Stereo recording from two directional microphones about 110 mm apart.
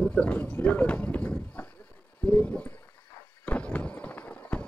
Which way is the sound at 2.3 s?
10° left (ahead or behind).